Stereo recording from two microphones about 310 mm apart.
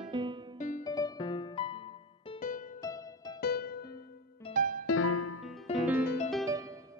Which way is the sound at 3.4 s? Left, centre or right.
Left.